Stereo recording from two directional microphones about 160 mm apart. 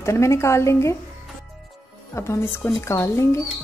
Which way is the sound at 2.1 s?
15° left (ahead or behind).